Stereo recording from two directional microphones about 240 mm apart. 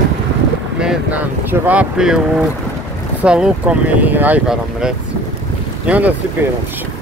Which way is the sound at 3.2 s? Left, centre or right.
Centre.